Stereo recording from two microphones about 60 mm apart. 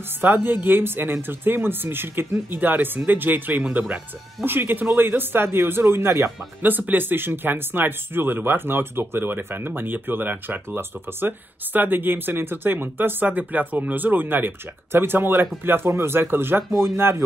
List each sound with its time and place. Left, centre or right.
0.2 s speech: right
6.6 s speech: right